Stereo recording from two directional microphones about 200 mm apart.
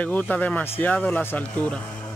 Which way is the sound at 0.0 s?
10° left (ahead or behind).